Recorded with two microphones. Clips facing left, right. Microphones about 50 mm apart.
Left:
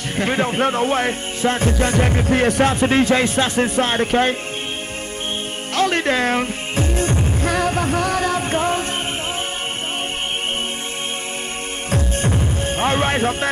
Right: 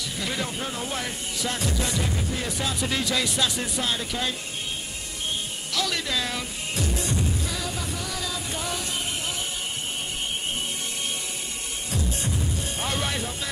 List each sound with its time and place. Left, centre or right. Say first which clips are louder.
0.1 s speech: left 12 dB; left
5.8 s music: left 10 dB; left
11.9 s music: left 9 dB; left